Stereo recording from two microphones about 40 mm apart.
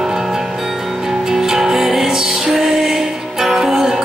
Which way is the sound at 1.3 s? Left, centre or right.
Centre.